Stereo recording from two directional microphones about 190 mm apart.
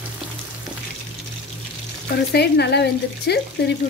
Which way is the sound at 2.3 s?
60° left (ahead or behind).